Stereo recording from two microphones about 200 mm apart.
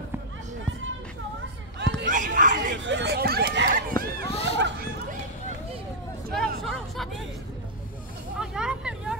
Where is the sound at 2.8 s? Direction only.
60° right (ahead or behind).